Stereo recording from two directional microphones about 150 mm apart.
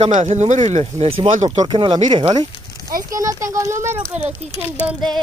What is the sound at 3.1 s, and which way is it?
Speech, 20° right (ahead or behind).